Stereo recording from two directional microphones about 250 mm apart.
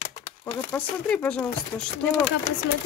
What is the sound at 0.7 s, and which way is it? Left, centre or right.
Speech, centre.